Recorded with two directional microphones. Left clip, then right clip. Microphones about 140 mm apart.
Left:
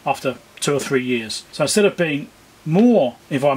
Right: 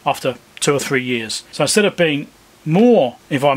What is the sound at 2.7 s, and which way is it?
Speech, 55° right (ahead or behind).